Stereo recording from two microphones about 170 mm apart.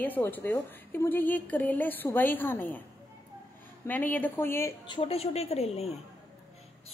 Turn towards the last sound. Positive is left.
turn(degrees=40)  # may be behind; listen again after turning